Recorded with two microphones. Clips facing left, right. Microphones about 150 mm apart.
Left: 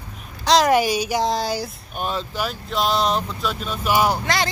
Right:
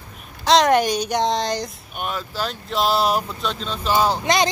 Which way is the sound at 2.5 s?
Centre (ahead or behind).